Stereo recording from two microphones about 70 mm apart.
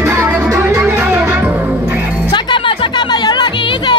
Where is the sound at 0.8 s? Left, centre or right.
Right.